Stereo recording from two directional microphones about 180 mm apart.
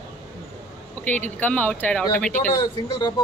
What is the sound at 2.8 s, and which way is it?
Speech, 25° left (ahead or behind).